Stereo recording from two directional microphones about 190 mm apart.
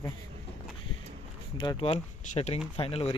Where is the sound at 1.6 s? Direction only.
25° left (ahead or behind).